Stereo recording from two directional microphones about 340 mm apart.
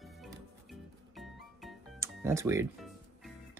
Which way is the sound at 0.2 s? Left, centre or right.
Centre.